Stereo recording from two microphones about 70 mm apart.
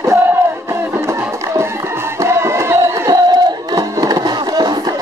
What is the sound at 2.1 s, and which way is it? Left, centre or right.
Crowd, right.